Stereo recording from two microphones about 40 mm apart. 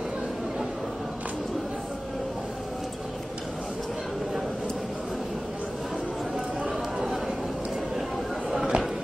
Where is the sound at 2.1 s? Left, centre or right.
Centre.